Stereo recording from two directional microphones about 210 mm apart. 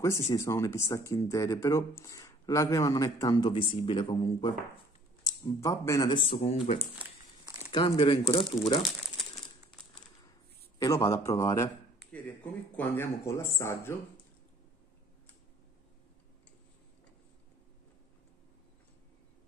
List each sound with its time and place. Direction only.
0.0 s speech: 15° left (ahead or behind)
10.8 s a man's voice: 15° left (ahead or behind)